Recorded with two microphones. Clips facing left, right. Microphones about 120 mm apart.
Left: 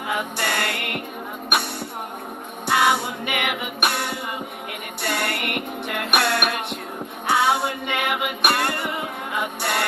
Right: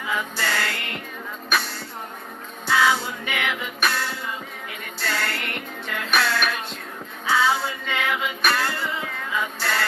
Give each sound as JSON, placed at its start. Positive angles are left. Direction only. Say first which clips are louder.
{"t": 0.0, "sound": "music", "louder": "left 1 dB", "side_deg": 60}
{"t": 2.6, "sound": "music", "louder": "left 1 dB", "side_deg": 60}